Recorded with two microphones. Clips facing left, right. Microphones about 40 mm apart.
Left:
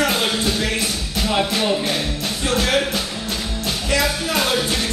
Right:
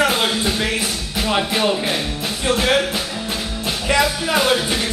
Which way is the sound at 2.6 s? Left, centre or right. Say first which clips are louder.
Even; centre.